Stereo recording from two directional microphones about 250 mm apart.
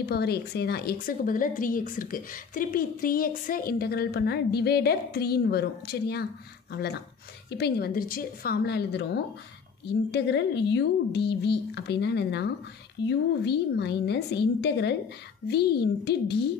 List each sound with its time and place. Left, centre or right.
0.0 s a woman's voice: left